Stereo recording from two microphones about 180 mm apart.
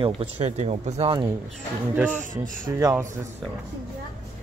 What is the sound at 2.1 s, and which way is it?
Speech, 50° right (ahead or behind).